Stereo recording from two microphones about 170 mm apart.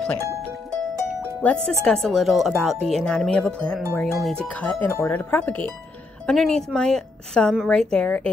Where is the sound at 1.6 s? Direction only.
5° left (ahead or behind).